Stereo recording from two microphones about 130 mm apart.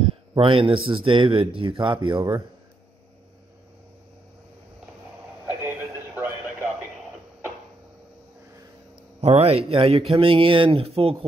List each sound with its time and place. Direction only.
0.3 s speech: 40° right (ahead or behind)
5.7 s radio: 15° right (ahead or behind)
9.2 s speech: 50° right (ahead or behind)